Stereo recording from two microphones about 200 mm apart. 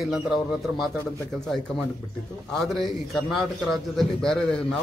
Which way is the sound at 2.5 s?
Centre (ahead or behind).